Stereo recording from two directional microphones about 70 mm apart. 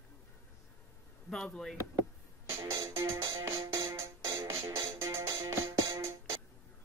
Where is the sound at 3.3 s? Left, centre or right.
Right.